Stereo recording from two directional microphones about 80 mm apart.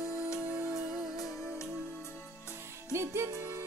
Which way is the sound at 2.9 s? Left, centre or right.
Right.